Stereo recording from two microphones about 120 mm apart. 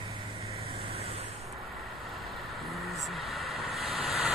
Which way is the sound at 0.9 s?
55° right (ahead or behind).